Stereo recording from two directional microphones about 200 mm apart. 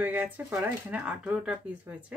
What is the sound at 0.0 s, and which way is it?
Speech, 10° right (ahead or behind).